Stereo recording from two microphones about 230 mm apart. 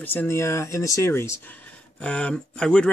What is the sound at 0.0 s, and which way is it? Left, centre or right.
Speech, centre.